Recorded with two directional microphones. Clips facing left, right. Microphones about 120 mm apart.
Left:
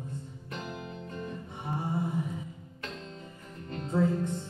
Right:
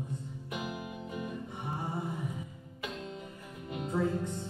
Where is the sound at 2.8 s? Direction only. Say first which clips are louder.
Right 2 dB; 10° right (ahead or behind).